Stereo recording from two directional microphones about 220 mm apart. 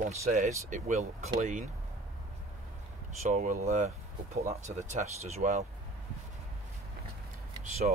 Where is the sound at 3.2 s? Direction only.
35° right (ahead or behind).